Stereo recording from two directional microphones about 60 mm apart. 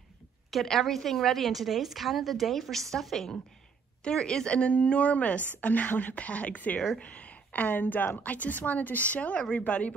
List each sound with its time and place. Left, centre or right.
0.5 s a woman's voice: centre; by 9.9 s left